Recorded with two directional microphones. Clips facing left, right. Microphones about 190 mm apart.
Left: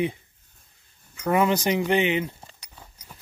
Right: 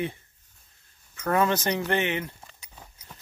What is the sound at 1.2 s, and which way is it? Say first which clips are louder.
Speech: left 2 dB; 15° left (ahead or behind).